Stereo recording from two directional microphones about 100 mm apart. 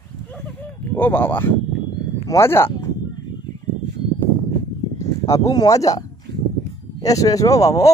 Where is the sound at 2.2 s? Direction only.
25° left (ahead or behind).